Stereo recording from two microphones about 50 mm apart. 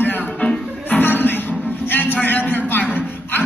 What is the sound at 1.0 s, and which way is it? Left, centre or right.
Music, left.